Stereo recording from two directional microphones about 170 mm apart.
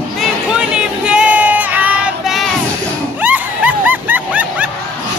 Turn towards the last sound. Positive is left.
turn(degrees=-10)  # may be behind; listen again after turning